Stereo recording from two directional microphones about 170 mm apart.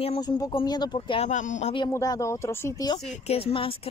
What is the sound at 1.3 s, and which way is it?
Speech, 45° left (ahead or behind).